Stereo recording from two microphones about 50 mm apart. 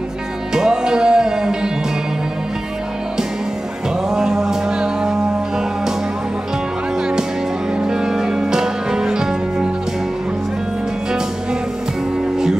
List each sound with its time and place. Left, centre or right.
0.5 s music: centre
4.1 s music: centre
7.8 s music: centre